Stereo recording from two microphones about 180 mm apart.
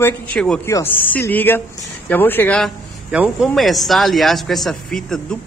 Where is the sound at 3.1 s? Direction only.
5° right (ahead or behind).